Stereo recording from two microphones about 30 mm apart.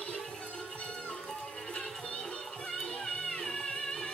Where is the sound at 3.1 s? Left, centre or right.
Centre.